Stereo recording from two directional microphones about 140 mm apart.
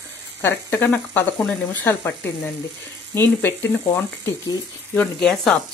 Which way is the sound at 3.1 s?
15° left (ahead or behind).